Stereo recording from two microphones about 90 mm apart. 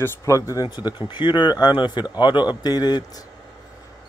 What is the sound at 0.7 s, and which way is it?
Speech, 55° left (ahead or behind).